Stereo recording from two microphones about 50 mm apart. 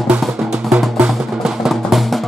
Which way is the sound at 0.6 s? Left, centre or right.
Centre.